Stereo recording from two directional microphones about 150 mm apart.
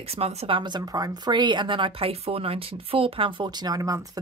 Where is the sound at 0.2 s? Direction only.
40° right (ahead or behind).